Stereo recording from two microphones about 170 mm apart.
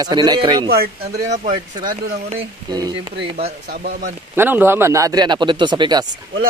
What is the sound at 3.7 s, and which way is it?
Speech, 60° right (ahead or behind).